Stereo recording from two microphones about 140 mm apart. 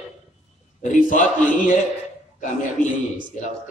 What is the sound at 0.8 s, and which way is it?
Speech, 70° left (ahead or behind).